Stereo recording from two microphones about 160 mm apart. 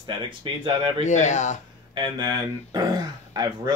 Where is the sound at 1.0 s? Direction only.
45° left (ahead or behind).